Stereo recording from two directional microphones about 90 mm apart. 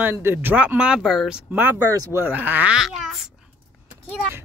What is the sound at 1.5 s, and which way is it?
Speech, 25° right (ahead or behind).